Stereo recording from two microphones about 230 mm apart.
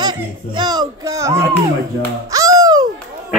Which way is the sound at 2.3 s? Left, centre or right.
Centre.